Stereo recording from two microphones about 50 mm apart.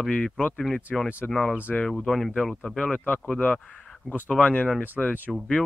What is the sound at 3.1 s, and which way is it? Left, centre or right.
Speech, left.